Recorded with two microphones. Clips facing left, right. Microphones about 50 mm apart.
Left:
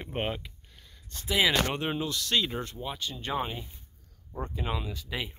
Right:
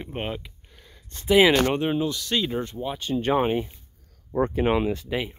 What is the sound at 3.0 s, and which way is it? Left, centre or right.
Speech, right.